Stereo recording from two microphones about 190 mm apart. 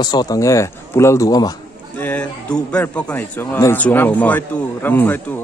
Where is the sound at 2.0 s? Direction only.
5° left (ahead or behind).